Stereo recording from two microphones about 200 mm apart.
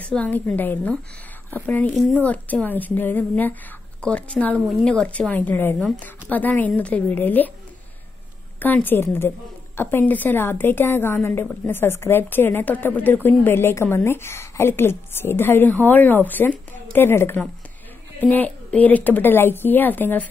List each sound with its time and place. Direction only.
0.0 s a woman's voice: 5° left (ahead or behind)
8.5 s a woman's voice: 10° left (ahead or behind)